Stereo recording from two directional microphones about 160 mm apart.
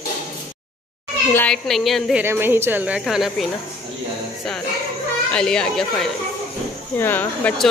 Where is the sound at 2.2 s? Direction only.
15° right (ahead or behind).